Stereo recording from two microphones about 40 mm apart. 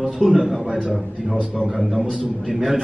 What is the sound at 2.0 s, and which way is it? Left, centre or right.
Speech, right.